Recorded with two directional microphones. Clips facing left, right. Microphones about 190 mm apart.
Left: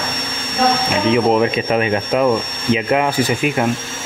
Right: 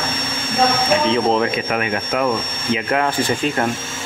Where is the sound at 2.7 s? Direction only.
15° left (ahead or behind).